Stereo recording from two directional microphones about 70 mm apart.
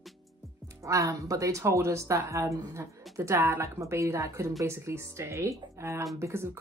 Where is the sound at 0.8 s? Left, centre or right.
Right.